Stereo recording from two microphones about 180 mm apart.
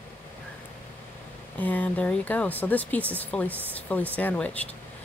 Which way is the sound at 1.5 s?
10° left (ahead or behind).